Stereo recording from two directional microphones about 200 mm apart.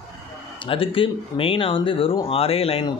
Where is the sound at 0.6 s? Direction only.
25° left (ahead or behind).